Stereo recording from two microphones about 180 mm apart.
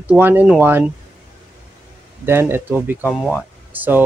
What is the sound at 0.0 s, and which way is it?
Speech, 10° right (ahead or behind).